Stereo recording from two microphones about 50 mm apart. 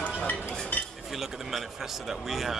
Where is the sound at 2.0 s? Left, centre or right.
Centre.